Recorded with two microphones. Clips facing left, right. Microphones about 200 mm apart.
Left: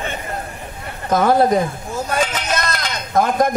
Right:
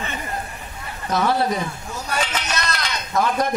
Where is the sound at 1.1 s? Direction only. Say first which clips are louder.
Left 6 dB; 50° left (ahead or behind).